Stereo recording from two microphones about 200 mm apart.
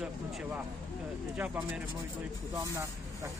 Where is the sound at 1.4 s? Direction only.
10° right (ahead or behind).